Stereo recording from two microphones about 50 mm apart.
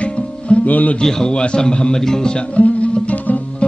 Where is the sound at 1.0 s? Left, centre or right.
Centre.